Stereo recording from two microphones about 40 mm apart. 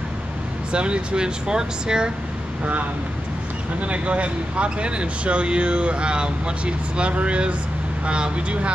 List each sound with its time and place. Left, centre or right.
0.7 s speech: right
2.6 s speech: right